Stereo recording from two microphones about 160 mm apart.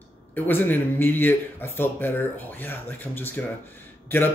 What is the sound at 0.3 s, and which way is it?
Speech, 10° left (ahead or behind).